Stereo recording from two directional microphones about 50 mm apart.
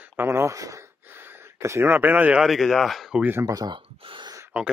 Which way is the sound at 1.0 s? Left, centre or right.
Right.